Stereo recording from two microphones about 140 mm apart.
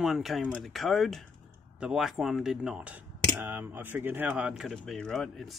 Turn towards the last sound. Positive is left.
turn(degrees=0)  # may be behind; listen again after turning